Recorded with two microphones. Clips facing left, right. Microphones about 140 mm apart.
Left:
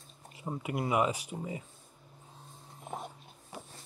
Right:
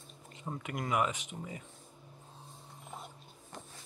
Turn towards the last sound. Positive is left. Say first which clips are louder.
# left 3 dB
turn(degrees=5)  # may be behind; listen again after turning